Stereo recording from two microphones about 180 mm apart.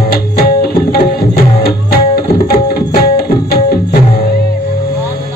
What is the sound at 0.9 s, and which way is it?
Tabla, 60° left (ahead or behind).